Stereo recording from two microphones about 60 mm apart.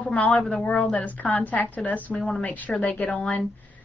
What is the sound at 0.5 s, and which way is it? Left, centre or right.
Speech, left.